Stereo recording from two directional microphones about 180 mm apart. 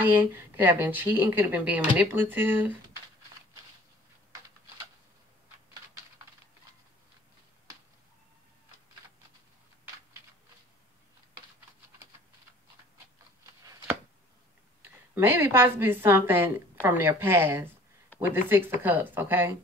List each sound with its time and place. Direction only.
0.0 s speech: 10° right (ahead or behind)
13.7 s chopping: 20° right (ahead or behind)
14.8 s a woman's voice: 15° right (ahead or behind)
18.1 s a sound: 10° left (ahead or behind)
18.5 s speech: 10° right (ahead or behind)